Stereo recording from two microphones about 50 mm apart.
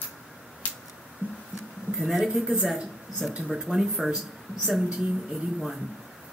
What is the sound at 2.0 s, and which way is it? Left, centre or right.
Speech, centre.